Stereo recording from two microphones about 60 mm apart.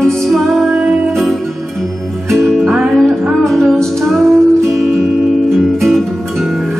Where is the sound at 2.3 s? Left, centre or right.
Centre.